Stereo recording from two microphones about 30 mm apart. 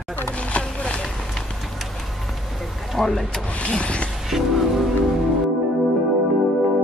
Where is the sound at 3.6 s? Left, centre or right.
Left.